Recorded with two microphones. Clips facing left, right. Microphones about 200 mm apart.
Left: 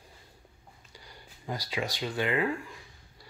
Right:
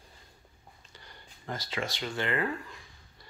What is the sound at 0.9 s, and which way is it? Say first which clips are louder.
Speech: left 3 dB; 10° left (ahead or behind).